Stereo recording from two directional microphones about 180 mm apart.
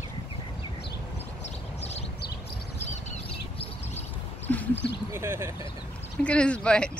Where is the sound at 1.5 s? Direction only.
35° left (ahead or behind).